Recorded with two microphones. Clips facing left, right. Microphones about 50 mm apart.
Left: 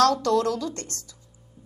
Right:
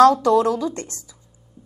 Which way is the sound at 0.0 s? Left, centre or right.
Centre.